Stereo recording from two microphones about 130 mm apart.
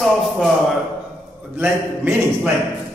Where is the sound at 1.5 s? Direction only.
15° right (ahead or behind).